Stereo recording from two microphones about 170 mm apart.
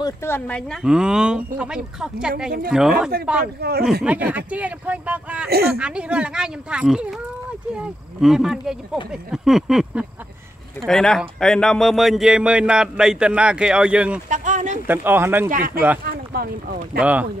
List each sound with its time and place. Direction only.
0.0 s a man's voice: 15° left (ahead or behind); by 3.1 s 5° right (ahead or behind)
3.6 s speech: 65° right (ahead or behind)
4.0 s a man's voice: 10° right (ahead or behind)
14.3 s a sound: 45° right (ahead or behind)
14.9 s speech: 10° right (ahead or behind)
15.5 s speech: 55° right (ahead or behind)
17.0 s speech: 10° right (ahead or behind)